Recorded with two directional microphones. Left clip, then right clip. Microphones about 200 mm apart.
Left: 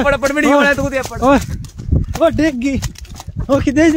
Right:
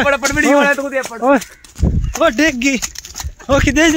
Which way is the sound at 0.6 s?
55° left (ahead or behind).